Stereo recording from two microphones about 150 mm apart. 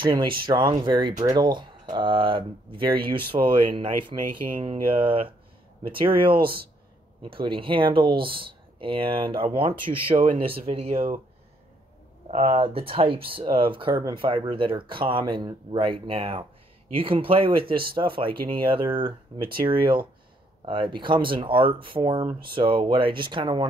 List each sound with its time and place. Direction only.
0.0 s speech: 30° right (ahead or behind)
7.2 s speech: 35° right (ahead or behind)
12.3 s speech: 45° right (ahead or behind)